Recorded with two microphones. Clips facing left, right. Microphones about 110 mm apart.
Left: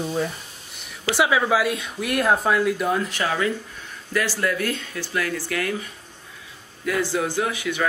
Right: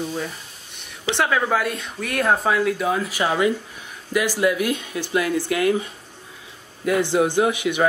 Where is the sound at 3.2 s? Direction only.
15° right (ahead or behind).